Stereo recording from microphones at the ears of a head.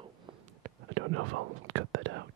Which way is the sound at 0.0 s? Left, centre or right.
Right.